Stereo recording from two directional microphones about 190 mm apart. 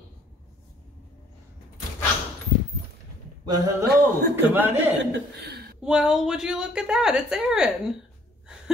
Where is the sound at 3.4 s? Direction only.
20° right (ahead or behind).